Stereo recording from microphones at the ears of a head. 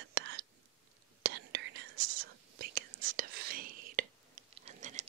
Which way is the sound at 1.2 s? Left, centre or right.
Right.